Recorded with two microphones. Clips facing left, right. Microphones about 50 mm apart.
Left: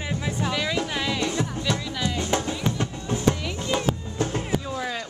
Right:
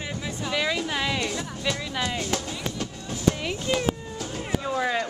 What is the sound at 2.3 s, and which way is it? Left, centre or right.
Music, left.